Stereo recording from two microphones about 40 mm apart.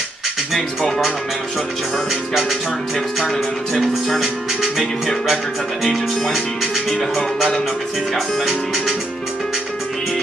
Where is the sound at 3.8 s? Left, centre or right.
Centre.